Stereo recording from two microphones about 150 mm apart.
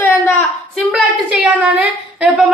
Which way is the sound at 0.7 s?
5° right (ahead or behind).